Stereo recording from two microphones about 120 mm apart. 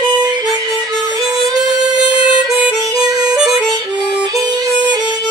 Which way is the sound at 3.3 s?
Centre (ahead or behind).